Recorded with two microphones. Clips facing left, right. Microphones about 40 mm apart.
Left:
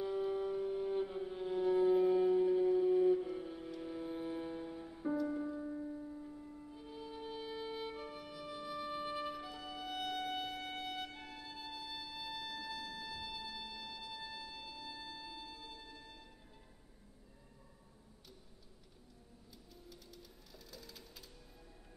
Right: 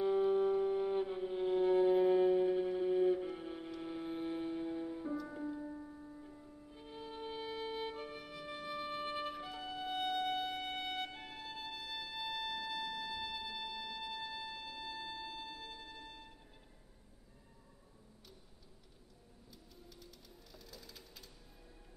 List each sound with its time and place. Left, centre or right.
0.0 s music: right
5.0 s music: centre
6.7 s music: right
15.8 s a sound: centre
19.9 s music: centre